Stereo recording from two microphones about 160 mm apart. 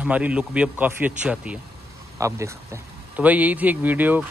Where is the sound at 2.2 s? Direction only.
20° right (ahead or behind).